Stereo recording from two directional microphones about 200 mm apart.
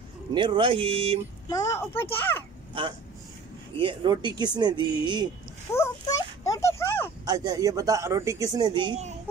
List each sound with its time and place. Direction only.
0.3 s speech: 25° right (ahead or behind)
1.5 s a child's voice: 15° left (ahead or behind)
2.8 s speech: 25° right (ahead or behind)
5.7 s a sound: 15° left (ahead or behind)
7.2 s speech: 20° right (ahead or behind)